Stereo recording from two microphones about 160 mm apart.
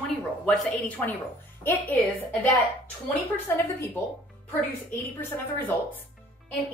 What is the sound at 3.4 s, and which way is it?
Speech, 10° left (ahead or behind).